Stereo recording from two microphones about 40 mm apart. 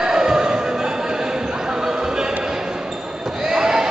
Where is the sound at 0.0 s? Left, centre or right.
Centre.